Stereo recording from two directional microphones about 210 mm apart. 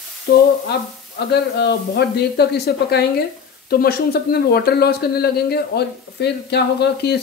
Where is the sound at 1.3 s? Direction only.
50° left (ahead or behind).